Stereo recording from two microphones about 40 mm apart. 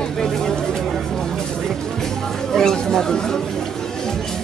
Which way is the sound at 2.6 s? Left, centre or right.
Centre.